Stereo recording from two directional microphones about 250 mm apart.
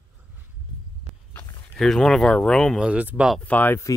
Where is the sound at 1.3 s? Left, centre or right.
Centre.